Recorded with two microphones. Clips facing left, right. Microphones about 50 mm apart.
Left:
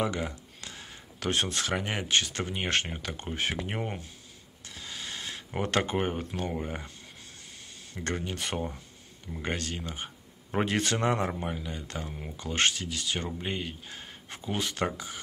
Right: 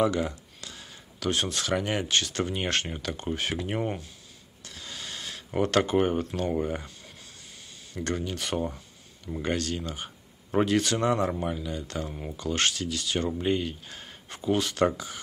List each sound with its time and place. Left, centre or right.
0.0 s speech: centre
0.6 s a sound: left
2.0 s speech: centre
4.6 s a sound: centre
6.0 s speech: centre
7.9 s speech: left
10.7 s speech: left
12.1 s speech: centre
12.4 s speech: left